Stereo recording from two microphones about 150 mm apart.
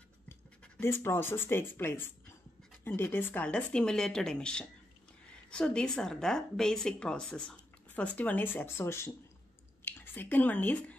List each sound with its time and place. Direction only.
0.3 s speech: 15° left (ahead or behind)